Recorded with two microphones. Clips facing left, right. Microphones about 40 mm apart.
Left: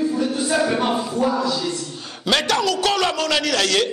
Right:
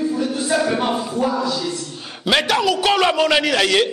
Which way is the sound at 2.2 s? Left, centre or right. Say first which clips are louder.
Right 2 dB; centre.